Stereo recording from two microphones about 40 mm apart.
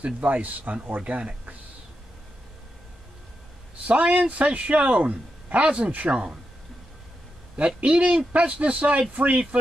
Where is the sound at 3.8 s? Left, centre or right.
Right.